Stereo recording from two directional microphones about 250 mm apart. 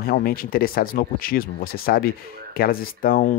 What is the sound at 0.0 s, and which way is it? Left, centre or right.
Speech, left.